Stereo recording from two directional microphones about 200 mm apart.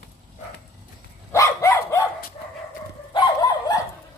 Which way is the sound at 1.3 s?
15° left (ahead or behind).